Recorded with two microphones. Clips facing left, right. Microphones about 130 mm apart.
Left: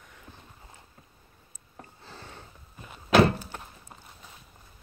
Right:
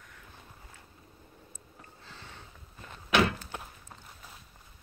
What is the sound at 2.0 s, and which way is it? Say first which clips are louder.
Sniff: left 3 dB; 40° left (ahead or behind).